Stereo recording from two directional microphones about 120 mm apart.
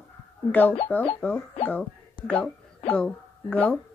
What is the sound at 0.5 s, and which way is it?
Speech, 15° left (ahead or behind).